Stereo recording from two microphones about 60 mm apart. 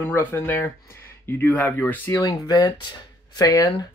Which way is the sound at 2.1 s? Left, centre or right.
Left.